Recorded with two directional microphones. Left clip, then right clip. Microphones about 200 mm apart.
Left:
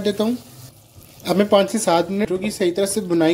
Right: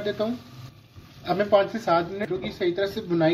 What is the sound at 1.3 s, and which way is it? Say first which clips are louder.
Speech: left 4 dB; 50° left (ahead or behind).